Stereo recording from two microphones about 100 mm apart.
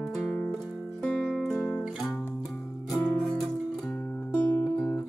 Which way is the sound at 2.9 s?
Centre (ahead or behind).